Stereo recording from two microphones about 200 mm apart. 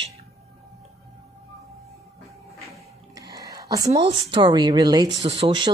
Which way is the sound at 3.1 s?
20° right (ahead or behind).